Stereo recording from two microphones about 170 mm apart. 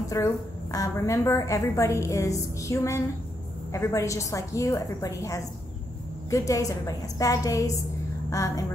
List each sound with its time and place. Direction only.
0.1 s a woman's voice: 20° left (ahead or behind)